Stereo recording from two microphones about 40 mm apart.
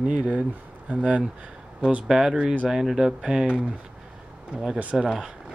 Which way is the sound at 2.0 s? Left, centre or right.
Centre.